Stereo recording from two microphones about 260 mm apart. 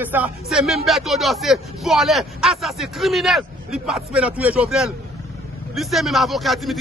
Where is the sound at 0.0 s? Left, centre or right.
Centre.